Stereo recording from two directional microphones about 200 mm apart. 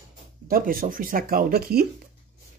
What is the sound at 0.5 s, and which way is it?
Speech, 45° right (ahead or behind).